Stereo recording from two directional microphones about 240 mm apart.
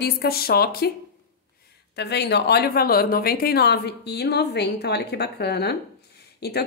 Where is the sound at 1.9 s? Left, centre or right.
Left.